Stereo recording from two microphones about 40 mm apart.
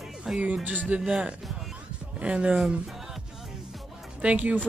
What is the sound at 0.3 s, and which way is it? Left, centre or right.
Speech, centre.